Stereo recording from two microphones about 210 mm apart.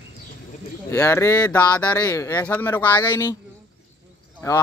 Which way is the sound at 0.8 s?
15° left (ahead or behind).